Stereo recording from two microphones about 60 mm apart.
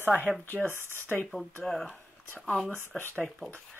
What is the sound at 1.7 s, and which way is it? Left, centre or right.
Speech, centre.